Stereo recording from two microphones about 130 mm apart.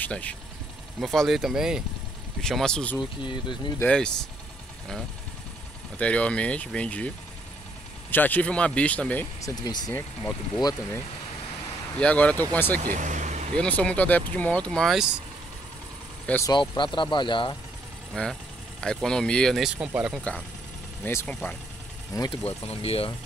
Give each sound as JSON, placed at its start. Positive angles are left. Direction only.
{"t": 0.0, "sound": "speech", "side_deg": 10}
{"t": 3.0, "sound": "speech", "side_deg": 35}
{"t": 3.8, "sound": "speech", "side_deg": 5}
{"t": 5.9, "sound": "speech", "side_deg": 10}
{"t": 8.1, "sound": "speech", "side_deg": 15}
{"t": 9.4, "sound": "speech", "side_deg": 30}
{"t": 12.0, "sound": "speech", "side_deg": 10}
{"t": 12.8, "sound": "speech", "side_deg": -80}
{"t": 13.6, "sound": "speech", "side_deg": 10}
{"t": 16.4, "sound": "speech", "side_deg": 35}
{"t": 18.1, "sound": "speech", "side_deg": 5}
{"t": 21.0, "sound": "speech", "side_deg": 20}
{"t": 21.3, "sound": "speech", "side_deg": 10}
{"t": 22.3, "sound": "speech", "side_deg": 50}